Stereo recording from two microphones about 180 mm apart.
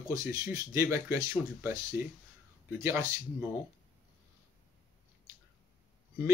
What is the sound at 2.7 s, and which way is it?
Speech, 15° right (ahead or behind).